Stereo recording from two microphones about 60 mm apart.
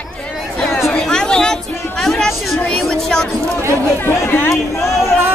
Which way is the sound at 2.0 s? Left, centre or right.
Centre.